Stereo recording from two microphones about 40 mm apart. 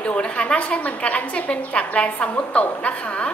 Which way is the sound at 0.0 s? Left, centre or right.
Left.